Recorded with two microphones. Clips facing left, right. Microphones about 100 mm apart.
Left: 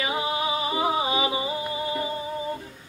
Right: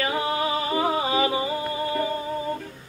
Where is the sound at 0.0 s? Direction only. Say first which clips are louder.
Right 2 dB; 15° left (ahead or behind).